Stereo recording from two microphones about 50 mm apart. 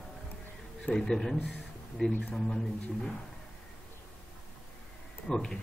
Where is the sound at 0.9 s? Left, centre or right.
Centre.